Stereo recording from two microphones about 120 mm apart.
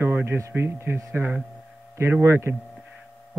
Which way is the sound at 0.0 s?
20° right (ahead or behind).